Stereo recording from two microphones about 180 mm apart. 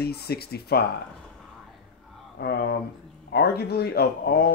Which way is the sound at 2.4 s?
60° left (ahead or behind).